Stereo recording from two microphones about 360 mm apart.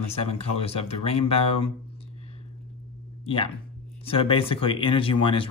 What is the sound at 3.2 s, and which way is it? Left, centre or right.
Speech, centre.